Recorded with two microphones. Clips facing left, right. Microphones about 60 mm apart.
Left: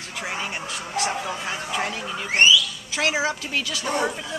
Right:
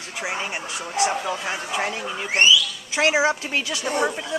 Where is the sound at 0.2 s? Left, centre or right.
Centre.